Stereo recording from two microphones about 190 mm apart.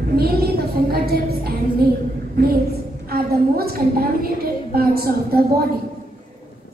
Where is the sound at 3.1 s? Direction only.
55° right (ahead or behind).